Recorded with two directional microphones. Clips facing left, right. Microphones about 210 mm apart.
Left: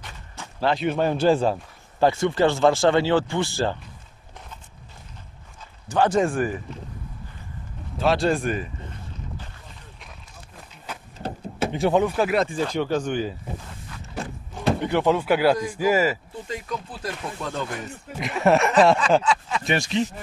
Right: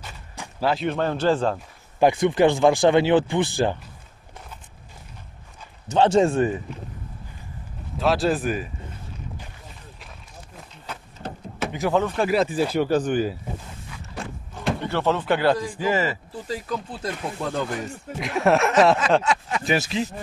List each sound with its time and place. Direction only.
0.0 s a sound: 10° right (ahead or behind)
0.8 s speech: 10° left (ahead or behind)
2.0 s speech: 15° right (ahead or behind)
5.9 s speech: 25° right (ahead or behind)
8.0 s speech: centre (ahead or behind)
11.2 s door: 30° left (ahead or behind)
12.0 s speech: 5° left (ahead or behind)
13.8 s vehicle: 5° right (ahead or behind)
14.8 s speech: 15° left (ahead or behind)
16.4 s speech: 35° right (ahead or behind)
18.2 s speech: centre (ahead or behind)